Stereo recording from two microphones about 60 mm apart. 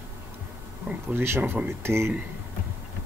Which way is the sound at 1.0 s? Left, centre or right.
Right.